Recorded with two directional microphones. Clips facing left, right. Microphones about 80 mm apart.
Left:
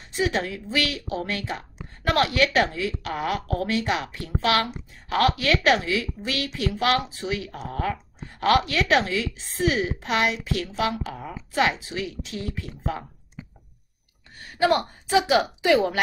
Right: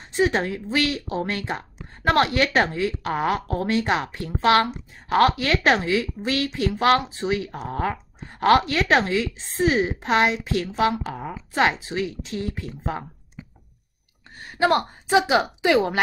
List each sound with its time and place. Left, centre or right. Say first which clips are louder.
0.0 s a woman's voice: right 4 dB; right
14.6 s a woman's voice: right 1 dB; right